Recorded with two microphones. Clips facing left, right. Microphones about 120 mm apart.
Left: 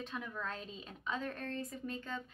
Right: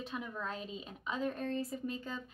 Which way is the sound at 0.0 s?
10° right (ahead or behind).